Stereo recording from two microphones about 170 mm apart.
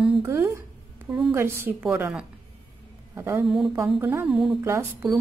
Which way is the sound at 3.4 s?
Centre (ahead or behind).